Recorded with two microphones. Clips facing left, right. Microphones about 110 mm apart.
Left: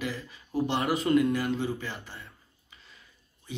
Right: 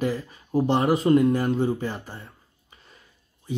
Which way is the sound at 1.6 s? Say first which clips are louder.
Right 7 dB; 45° right (ahead or behind).